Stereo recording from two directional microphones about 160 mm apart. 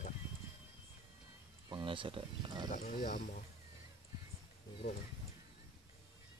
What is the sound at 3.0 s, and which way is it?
Speech, 60° left (ahead or behind).